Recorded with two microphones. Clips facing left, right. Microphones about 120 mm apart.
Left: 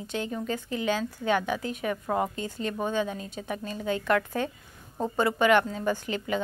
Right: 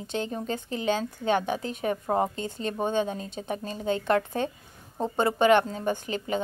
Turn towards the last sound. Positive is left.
turn(degrees=-25)  # may be behind; listen again after turning